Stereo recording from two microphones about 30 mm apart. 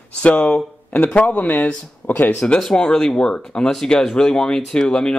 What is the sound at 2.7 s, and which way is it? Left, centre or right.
Speech, left.